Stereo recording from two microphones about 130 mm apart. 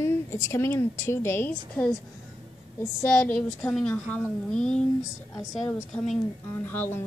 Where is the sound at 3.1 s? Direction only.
10° left (ahead or behind).